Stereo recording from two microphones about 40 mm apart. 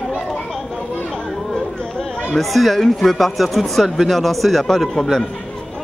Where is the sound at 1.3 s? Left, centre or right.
Centre.